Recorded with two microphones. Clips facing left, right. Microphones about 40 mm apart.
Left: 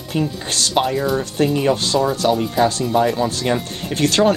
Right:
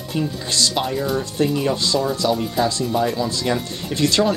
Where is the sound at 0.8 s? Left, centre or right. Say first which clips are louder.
Left 3 dB; centre.